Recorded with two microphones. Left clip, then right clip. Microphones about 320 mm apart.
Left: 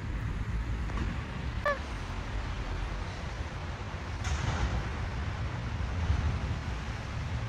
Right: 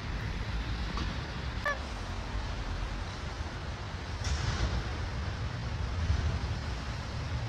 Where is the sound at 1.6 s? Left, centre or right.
Centre.